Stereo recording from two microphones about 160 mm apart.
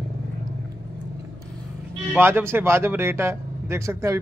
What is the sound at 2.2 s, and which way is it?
A man's voice, 15° right (ahead or behind).